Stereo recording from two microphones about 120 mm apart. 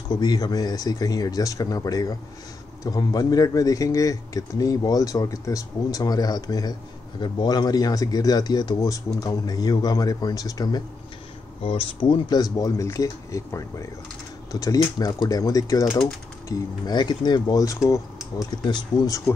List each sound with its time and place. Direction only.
0.1 s speech: 35° left (ahead or behind)
11.6 s speech: 45° left (ahead or behind); by 19.3 s 30° left (ahead or behind)